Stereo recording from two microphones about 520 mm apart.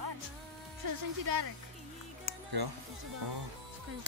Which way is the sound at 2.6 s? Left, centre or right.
Right.